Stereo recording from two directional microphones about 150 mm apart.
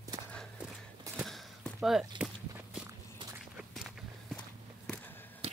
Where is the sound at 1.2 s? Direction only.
Centre (ahead or behind).